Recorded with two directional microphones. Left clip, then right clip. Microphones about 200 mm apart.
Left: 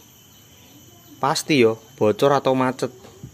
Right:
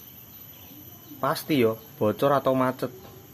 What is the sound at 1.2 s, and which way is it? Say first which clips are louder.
Speech: left 6 dB; 45° left (ahead or behind).